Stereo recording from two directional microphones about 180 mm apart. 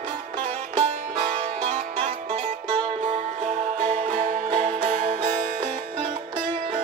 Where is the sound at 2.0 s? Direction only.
30° right (ahead or behind).